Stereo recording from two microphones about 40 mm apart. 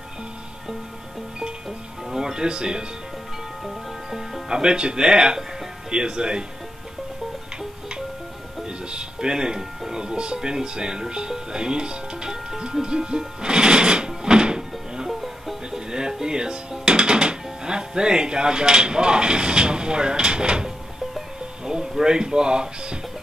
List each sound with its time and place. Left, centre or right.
2.0 s music: centre
3.6 s music: centre
4.5 s speech: centre
8.6 s speech: centre
13.4 s music: right
15.0 s music: centre
15.7 s speech: centre
22.0 s speech: centre